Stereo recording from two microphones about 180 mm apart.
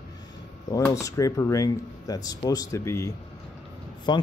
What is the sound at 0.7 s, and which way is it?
Speech, 20° left (ahead or behind).